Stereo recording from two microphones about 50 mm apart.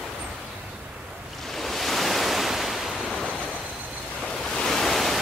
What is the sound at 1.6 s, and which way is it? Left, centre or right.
Waves, centre.